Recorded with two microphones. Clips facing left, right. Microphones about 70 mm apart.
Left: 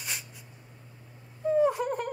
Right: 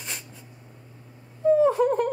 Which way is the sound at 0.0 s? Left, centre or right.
Centre.